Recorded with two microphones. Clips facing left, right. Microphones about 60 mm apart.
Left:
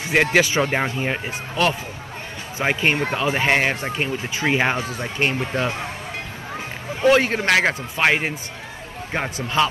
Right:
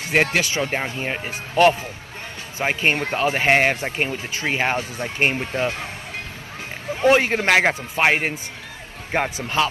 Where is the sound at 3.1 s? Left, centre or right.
Centre.